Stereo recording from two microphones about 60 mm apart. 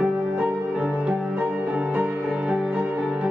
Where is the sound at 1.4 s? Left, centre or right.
Right.